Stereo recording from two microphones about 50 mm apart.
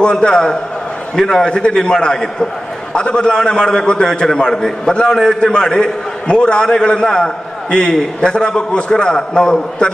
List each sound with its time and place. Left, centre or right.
0.0 s a man's voice: centre